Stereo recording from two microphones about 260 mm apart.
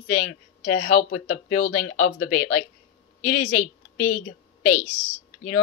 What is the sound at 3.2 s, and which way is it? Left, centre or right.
Speech, left.